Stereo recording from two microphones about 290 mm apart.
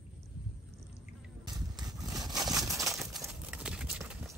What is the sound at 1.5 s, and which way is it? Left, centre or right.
Horse, centre.